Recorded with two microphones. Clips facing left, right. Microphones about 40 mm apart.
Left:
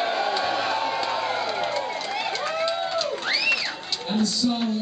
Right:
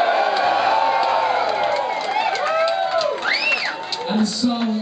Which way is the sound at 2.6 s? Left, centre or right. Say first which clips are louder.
Right 5 dB; centre.